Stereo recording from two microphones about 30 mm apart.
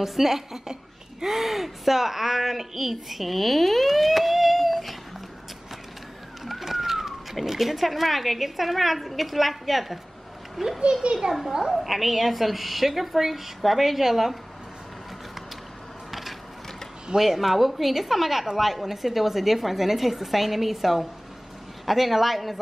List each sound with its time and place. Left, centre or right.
0.0 s a woman's voice: centre
6.4 s vehicle: centre
7.4 s a woman's voice: centre
10.9 s a child's voice: right
11.7 s a woman's voice: centre
16.1 s mechanisms: centre
17.2 s a woman's voice: centre